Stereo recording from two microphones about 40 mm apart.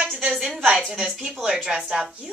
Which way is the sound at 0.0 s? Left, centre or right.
Centre.